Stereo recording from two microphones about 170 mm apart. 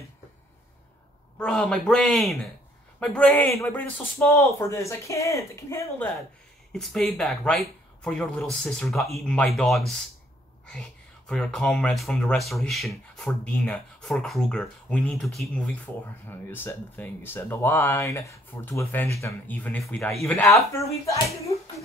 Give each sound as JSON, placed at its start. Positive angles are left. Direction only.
{"t": 1.4, "sound": "speech", "side_deg": 5}
{"t": 6.7, "sound": "speech", "side_deg": 5}
{"t": 16.3, "sound": "speech", "side_deg": 10}